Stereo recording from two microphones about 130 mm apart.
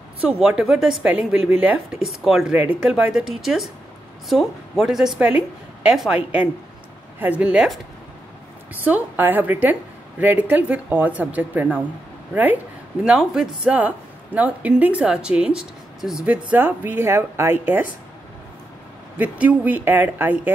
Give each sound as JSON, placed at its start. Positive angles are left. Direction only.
{"t": 0.2, "sound": "speech", "side_deg": -5}
{"t": 8.8, "sound": "speech", "side_deg": -15}
{"t": 13.0, "sound": "speech", "side_deg": -5}
{"t": 19.1, "sound": "speech", "side_deg": -10}